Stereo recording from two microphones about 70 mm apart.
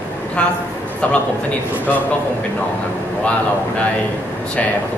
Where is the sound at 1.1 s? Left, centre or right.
Centre.